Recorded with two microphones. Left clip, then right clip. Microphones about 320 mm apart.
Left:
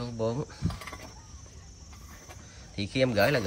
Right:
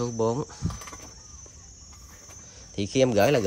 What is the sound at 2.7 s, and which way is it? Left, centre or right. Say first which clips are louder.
Speech: right 5 dB; right.